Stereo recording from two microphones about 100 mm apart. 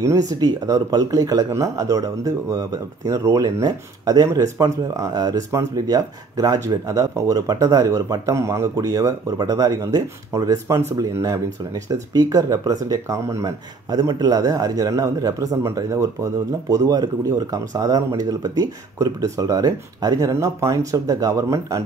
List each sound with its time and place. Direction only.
0.0 s speech: 35° right (ahead or behind)